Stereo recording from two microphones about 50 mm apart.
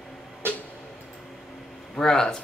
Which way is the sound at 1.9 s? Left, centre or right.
Centre.